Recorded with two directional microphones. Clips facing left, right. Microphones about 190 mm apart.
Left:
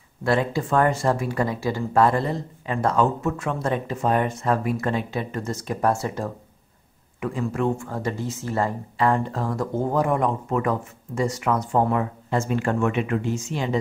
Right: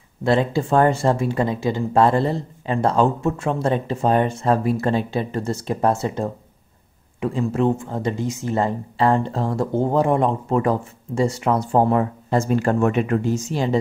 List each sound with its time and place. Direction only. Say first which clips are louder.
0.2 s speech: right 3 dB; 25° right (ahead or behind)